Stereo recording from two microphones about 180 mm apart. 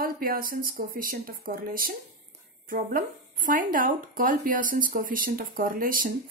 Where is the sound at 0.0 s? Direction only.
55° right (ahead or behind).